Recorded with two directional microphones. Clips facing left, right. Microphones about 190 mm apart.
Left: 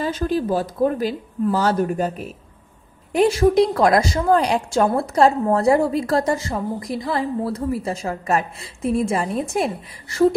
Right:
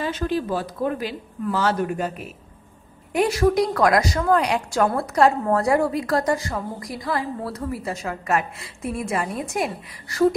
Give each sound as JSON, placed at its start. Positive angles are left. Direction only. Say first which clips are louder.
{"t": 0.0, "sound": "speech", "louder": "left 3 dB", "side_deg": 40}
{"t": 3.1, "sound": "a woman's voice", "louder": "left 3 dB", "side_deg": 25}